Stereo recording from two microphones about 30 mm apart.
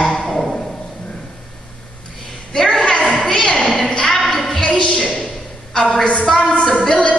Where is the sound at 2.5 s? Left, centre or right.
Centre.